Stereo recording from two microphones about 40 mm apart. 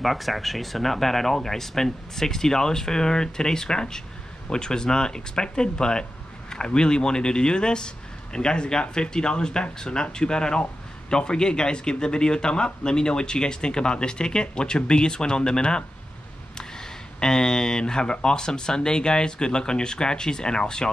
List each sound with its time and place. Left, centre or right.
0.0 s a man's voice: centre